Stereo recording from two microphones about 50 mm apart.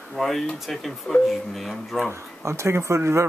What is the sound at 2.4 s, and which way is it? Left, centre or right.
Speech, right.